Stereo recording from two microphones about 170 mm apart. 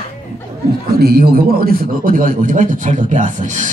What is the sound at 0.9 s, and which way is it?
A man's voice, 65° right (ahead or behind).